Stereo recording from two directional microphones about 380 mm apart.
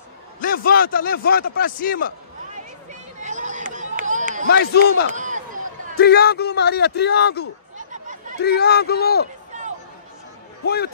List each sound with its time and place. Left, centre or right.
0.4 s a man's voice: left
2.9 s run: centre
4.5 s a man's voice: left
5.1 s a sound: centre
5.9 s a man's voice: left
7.7 s chatter: centre
8.4 s a man's voice: left
10.6 s speech: left